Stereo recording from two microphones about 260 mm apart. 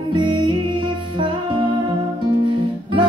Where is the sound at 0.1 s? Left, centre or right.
Centre.